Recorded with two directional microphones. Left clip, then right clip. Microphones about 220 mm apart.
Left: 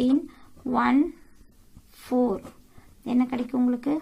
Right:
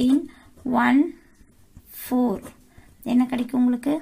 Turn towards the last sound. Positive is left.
turn(degrees=-50)  # may be behind; listen again after turning